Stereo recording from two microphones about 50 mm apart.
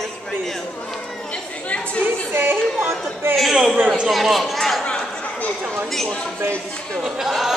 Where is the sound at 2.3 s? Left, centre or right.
Right.